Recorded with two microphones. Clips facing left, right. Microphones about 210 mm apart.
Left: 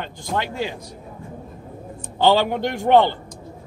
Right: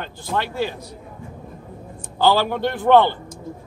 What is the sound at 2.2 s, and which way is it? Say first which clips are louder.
Speech: left 1 dB; 20° left (ahead or behind).